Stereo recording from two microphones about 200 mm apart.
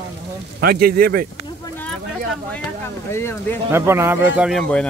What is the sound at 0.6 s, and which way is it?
Speech, 50° right (ahead or behind).